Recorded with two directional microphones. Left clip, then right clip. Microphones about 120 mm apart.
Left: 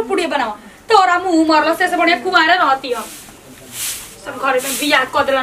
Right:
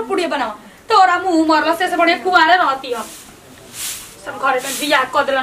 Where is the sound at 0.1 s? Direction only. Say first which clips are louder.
Right 1 dB; centre (ahead or behind).